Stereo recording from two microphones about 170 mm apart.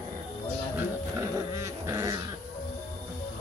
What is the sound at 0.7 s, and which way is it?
Dog, 15° right (ahead or behind).